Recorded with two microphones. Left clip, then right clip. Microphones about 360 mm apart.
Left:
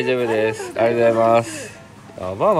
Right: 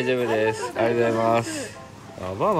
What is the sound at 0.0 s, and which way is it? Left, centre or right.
Speech, centre.